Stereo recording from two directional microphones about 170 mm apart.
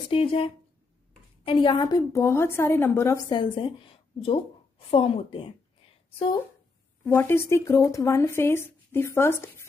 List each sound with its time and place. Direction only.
0.1 s a woman's voice: 35° left (ahead or behind)
7.1 s speech: 10° left (ahead or behind)